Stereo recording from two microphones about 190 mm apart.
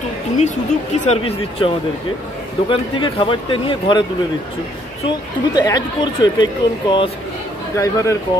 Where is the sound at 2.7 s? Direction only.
25° left (ahead or behind).